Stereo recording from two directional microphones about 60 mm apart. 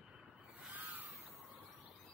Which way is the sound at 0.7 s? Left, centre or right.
Right.